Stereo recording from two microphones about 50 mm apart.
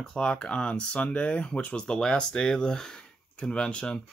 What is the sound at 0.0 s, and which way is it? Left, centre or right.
Speech, centre.